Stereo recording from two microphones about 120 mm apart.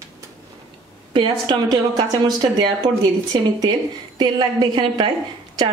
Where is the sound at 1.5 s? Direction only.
35° right (ahead or behind).